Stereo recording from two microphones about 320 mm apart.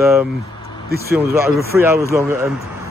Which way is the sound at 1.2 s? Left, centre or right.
Centre.